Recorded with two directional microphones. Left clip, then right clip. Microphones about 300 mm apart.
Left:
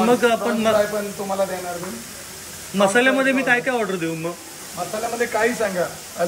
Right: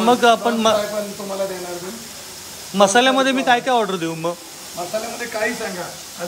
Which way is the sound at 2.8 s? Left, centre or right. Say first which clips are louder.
Right 3 dB; centre.